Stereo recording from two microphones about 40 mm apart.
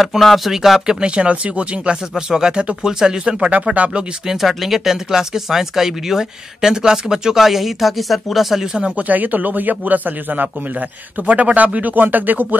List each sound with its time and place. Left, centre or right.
0.0 s speech: centre
0.5 s speech: centre
1.0 s speech: right
2.1 s speech: centre
3.8 s speech: right
4.3 s speech: centre
8.9 s speech: right